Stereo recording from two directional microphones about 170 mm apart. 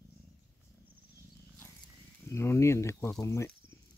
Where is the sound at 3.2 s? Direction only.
15° left (ahead or behind).